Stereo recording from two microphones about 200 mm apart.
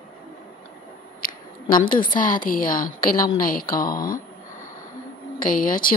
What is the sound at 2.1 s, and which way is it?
Speech, 45° left (ahead or behind).